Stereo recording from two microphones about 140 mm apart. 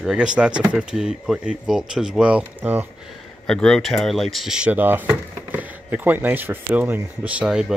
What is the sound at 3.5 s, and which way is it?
Speech, 5° left (ahead or behind).